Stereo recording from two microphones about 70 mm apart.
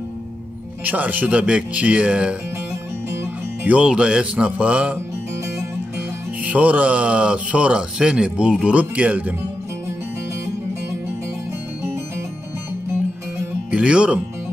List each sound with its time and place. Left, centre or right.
0.8 s speech: right
3.6 s speech: centre
6.4 s speech: right
13.7 s speech: centre